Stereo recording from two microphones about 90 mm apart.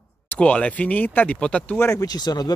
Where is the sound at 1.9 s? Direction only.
45° left (ahead or behind).